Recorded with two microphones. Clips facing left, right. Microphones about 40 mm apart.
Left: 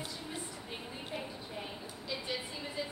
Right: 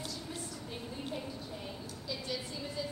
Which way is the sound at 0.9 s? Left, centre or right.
Left.